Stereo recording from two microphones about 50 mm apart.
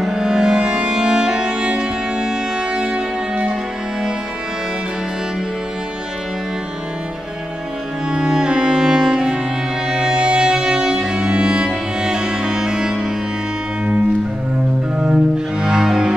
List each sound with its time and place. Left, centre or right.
0.0 s music: centre
8.1 s cello: centre
9.8 s music: centre
15.0 s cello: centre